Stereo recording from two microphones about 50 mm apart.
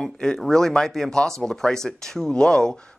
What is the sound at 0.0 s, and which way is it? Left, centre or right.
Speech, centre.